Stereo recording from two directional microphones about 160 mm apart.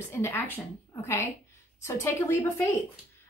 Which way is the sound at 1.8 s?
15° left (ahead or behind).